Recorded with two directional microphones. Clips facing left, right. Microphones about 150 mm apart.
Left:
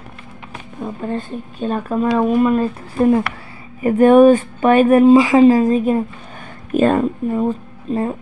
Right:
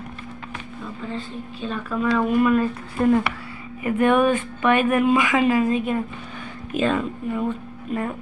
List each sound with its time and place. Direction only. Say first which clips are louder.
0.8 s a woman's voice: left 8 dB; 50° left (ahead or behind)
2.1 s speech: left 3 dB; 30° left (ahead or behind)